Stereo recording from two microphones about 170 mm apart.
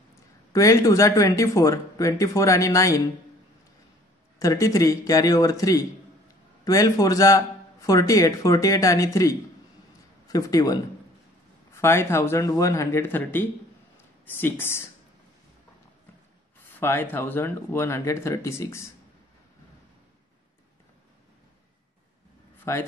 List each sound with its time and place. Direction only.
0.5 s a man's voice: 20° left (ahead or behind)
4.4 s a man's voice: 20° left (ahead or behind)
16.8 s speech: 15° left (ahead or behind)
22.7 s speech: 15° left (ahead or behind)